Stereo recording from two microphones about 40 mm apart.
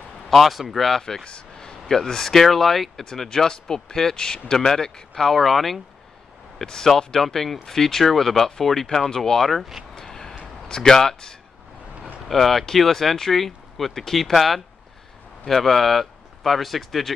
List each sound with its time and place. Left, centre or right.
0.3 s speech: centre
1.2 s a sound: left
1.7 s speech: centre
9.9 s a sound: centre
10.4 s speech: centre
12.3 s speech: centre